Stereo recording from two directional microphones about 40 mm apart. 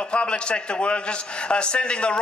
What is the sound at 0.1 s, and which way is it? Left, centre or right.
A man's voice, left.